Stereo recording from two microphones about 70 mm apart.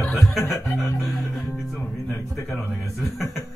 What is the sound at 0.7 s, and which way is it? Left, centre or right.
Music, centre.